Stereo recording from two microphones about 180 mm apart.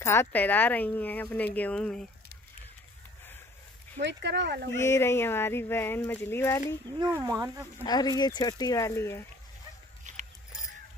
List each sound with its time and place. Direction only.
0.0 s speech: 15° left (ahead or behind)
4.0 s speech: 75° right (ahead or behind)
4.7 s speech: 15° left (ahead or behind)
7.0 s speech: 20° right (ahead or behind)
7.8 s speech: 20° left (ahead or behind)
10.1 s biting: 45° right (ahead or behind)